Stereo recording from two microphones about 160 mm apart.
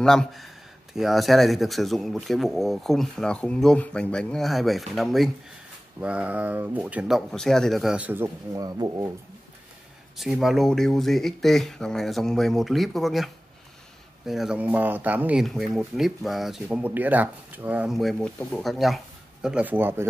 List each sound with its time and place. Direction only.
0.0 s speech: 5° left (ahead or behind)
8.5 s speech: 25° right (ahead or behind)
10.1 s speech: centre (ahead or behind)